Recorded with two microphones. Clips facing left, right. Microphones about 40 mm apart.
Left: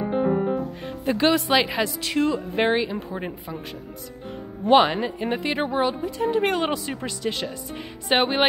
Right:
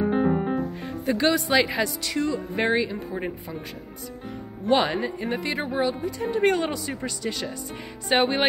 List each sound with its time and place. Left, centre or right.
0.0 s music: centre
1.0 s speech: centre
2.5 s speech: left
4.7 s speech: centre
6.2 s speech: centre
6.6 s speech: left